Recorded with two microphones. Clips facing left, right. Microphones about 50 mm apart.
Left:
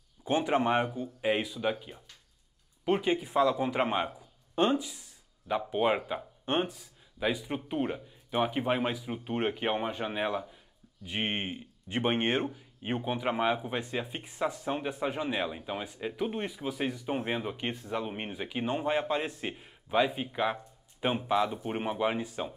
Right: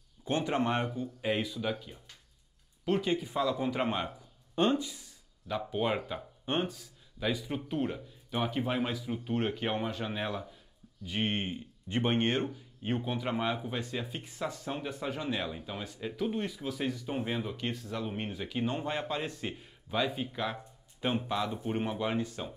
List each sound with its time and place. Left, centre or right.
0.2 s speech: centre